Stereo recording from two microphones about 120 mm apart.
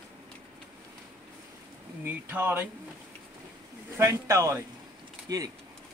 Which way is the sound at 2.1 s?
15° right (ahead or behind).